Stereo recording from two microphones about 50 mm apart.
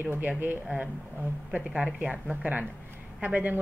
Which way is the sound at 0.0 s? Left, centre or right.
Right.